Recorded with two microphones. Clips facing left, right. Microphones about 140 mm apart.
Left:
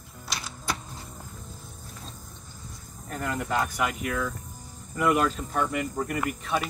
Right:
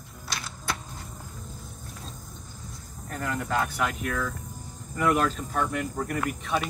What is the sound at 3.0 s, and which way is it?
Speech, 10° left (ahead or behind).